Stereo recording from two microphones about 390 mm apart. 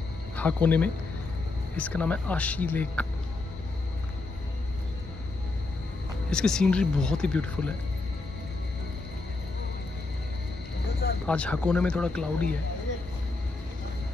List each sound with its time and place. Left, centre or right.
0.4 s speech: centre
6.3 s speech: centre
11.2 s speech: centre